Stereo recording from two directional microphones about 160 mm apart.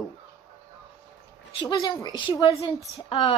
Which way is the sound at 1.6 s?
20° left (ahead or behind).